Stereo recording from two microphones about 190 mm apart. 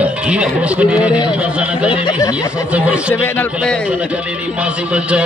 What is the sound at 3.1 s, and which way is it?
Speech, 10° left (ahead or behind).